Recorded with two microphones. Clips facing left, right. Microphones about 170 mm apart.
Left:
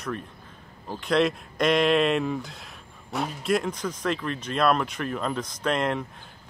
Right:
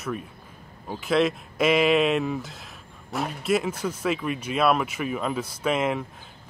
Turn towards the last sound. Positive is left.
turn(degrees=-5)  # may be behind; listen again after turning